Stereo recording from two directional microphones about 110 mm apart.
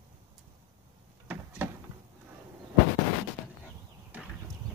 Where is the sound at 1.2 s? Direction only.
15° right (ahead or behind).